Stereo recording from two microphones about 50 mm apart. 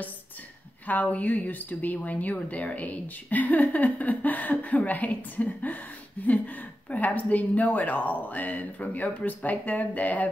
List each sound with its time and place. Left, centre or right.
0.8 s a woman's voice: left